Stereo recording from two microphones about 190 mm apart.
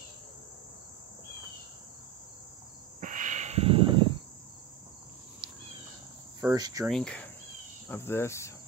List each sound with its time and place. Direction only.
3.0 s owl: 40° right (ahead or behind); by 4.1 s 25° right (ahead or behind)
6.5 s cricket: 20° right (ahead or behind)
6.9 s insect: 5° left (ahead or behind)
7.9 s cricket: 10° left (ahead or behind)